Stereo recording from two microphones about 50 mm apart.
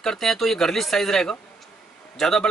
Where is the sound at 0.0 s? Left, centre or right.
Centre.